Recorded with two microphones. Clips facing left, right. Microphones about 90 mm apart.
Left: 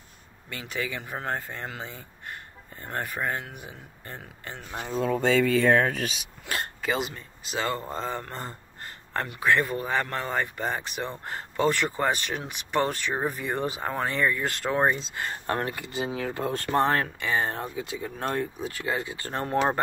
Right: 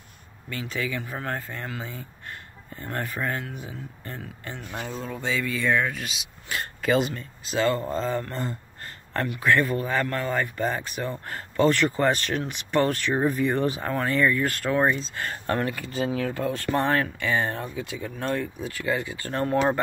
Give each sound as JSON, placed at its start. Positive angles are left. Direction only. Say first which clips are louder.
{"t": 0.7, "sound": "speech", "louder": "right 1 dB", "side_deg": 20}
{"t": 5.1, "sound": "speech", "louder": "left 7 dB", "side_deg": 55}
{"t": 6.8, "sound": "speech", "louder": "right 7 dB", "side_deg": 5}
{"t": 7.2, "sound": "speech", "louder": "right 5 dB", "side_deg": 15}